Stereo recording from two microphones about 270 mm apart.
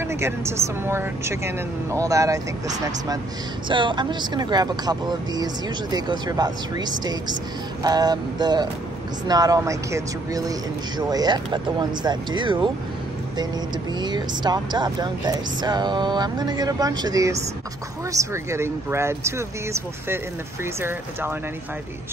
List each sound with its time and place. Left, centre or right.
0.0 s speech: centre
3.6 s speech: centre
13.9 s speech: centre